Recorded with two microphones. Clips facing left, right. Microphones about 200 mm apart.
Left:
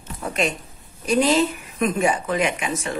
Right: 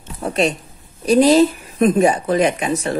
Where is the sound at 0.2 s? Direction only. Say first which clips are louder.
Right 6 dB; 35° right (ahead or behind).